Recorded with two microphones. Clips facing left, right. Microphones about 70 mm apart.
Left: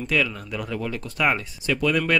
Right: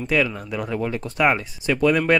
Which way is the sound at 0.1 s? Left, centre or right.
Centre.